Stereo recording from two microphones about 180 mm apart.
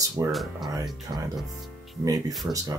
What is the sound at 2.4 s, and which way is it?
Speech, 15° right (ahead or behind).